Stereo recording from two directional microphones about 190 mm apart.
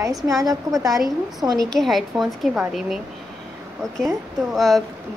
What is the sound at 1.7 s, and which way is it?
A woman's voice, centre (ahead or behind).